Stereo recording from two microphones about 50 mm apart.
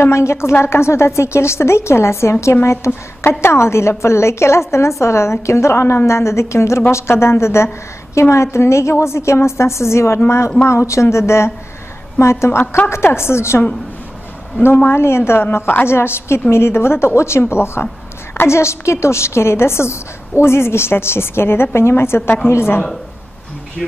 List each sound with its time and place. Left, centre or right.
0.1 s a woman's voice: left
3.3 s a woman's voice: left
10.7 s a woman's voice: left
14.9 s a woman's voice: left
15.5 s a woman's voice: left